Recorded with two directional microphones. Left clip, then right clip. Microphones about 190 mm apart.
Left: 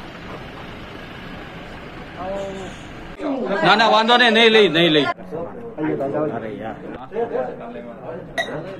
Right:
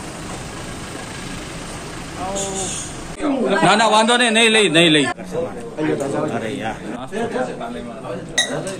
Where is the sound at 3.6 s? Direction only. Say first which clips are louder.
Even; 65° right (ahead or behind).